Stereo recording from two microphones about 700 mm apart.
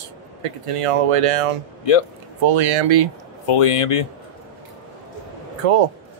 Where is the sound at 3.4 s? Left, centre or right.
Left.